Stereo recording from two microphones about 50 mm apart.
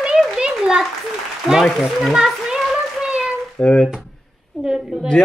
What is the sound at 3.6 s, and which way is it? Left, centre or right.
Speech, left.